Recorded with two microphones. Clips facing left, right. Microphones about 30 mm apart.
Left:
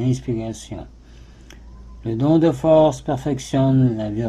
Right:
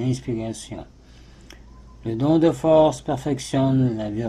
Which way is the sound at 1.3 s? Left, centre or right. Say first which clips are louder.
Even; right.